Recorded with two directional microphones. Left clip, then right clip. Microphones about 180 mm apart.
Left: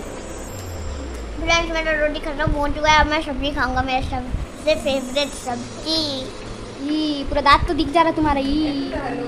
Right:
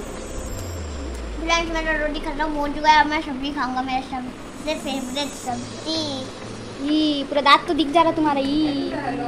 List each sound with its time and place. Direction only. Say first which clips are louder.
1.5 s a woman's voice: left 2 dB; 15° left (ahead or behind)
3.1 s a woman's voice: left 3 dB; 30° left (ahead or behind)
5.9 s a woman's voice: left 4 dB; 15° left (ahead or behind)
6.9 s a woman's voice: right 2 dB; centre (ahead or behind)